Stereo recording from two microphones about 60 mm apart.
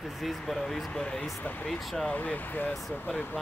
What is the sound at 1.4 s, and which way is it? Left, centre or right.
Speech, left.